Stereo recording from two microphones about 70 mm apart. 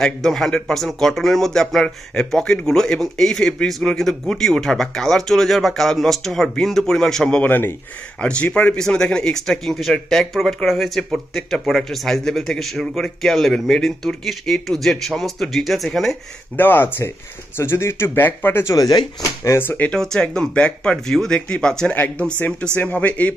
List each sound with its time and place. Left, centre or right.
0.0 s speech: centre
7.4 s speech: left
8.2 s speech: centre
16.5 s speech: left
18.8 s speech: left
19.4 s speech: left
19.9 s speech: centre
21.9 s speech: left